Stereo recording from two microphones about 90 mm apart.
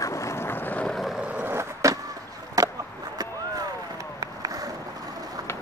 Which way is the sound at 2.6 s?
45° right (ahead or behind).